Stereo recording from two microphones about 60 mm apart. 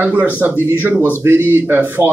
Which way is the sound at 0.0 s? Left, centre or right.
Right.